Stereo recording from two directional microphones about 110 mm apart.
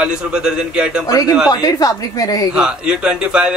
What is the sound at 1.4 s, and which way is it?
Speech, 35° left (ahead or behind).